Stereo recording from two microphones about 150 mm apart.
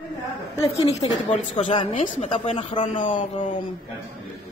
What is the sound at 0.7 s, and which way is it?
A woman's voice, 45° left (ahead or behind).